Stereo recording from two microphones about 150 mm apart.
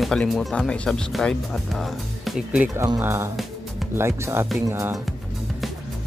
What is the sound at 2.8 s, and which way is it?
Speech, 15° right (ahead or behind).